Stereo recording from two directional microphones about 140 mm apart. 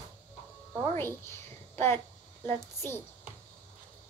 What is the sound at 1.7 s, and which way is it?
A woman's voice, 15° left (ahead or behind).